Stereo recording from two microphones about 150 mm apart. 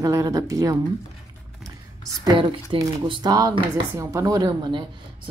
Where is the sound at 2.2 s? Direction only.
30° right (ahead or behind).